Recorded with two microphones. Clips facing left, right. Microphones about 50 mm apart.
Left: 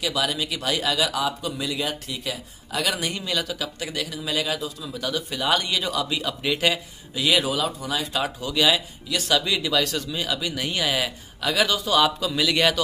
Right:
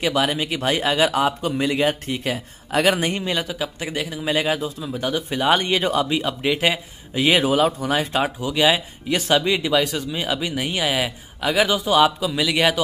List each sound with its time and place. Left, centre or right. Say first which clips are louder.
0.0 s speech: right 5 dB; right
7.2 s speech: right 5 dB; right
8.4 s speech: right 1 dB; right